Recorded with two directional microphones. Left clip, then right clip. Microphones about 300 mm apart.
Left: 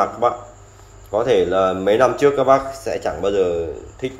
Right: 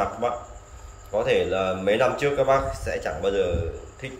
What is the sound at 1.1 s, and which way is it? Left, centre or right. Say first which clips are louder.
A man's voice: left 6 dB; centre.